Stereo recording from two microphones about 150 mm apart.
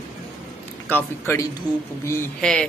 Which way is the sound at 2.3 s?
5° left (ahead or behind).